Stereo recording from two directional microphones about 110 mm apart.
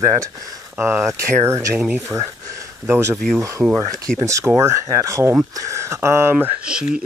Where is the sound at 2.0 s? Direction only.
25° right (ahead or behind).